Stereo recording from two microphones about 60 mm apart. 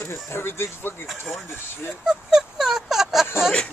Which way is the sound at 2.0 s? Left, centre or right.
Centre.